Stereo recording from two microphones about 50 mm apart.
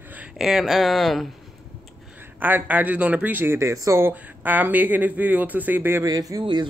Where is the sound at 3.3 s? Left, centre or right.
Right.